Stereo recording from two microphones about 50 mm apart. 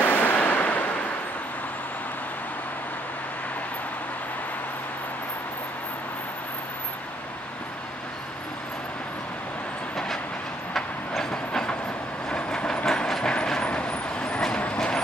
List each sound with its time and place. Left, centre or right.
0.0 s a sound: left
10.7 s train: centre
12.8 s vehicle: centre